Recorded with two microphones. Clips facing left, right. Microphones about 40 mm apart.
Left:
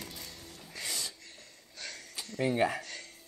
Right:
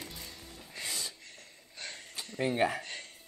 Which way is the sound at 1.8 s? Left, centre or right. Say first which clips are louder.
Even; right.